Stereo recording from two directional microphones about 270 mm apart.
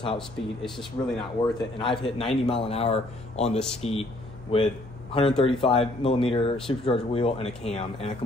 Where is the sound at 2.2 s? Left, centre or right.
Left.